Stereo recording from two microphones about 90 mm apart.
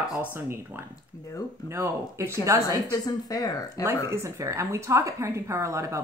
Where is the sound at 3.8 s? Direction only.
30° right (ahead or behind).